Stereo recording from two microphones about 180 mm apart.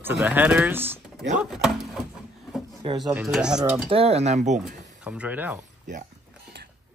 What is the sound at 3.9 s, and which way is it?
Speech, 35° right (ahead or behind).